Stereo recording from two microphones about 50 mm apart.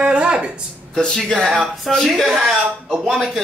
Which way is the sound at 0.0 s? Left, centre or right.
Centre.